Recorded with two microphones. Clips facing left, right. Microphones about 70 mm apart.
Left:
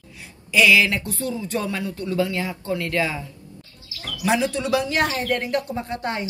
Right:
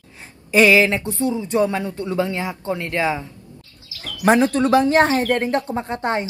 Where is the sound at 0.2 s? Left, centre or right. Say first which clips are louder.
Right 4 dB; right.